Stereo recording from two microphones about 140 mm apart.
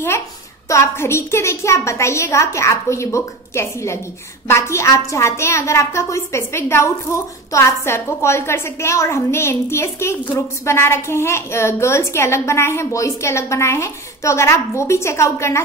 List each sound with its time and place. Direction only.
0.7 s a woman's voice: 20° left (ahead or behind)